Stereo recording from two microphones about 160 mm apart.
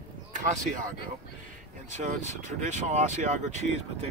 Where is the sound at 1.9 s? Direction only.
50° right (ahead or behind).